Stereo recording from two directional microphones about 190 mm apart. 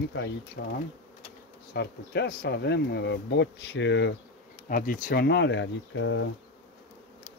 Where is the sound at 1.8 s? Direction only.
60° left (ahead or behind).